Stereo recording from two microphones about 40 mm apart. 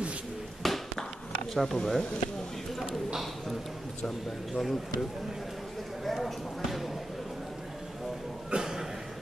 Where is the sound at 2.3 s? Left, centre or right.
Centre.